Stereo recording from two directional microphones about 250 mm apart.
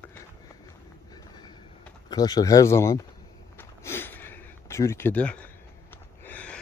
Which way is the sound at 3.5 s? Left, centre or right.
Centre.